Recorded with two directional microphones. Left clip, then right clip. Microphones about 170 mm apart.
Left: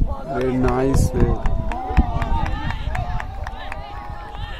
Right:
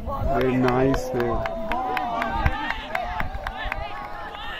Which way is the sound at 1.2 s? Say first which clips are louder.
Even; 50° right (ahead or behind).